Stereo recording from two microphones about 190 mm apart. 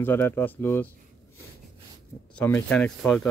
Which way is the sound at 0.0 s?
10° left (ahead or behind).